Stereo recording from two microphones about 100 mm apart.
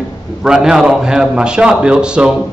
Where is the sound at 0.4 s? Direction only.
5° right (ahead or behind).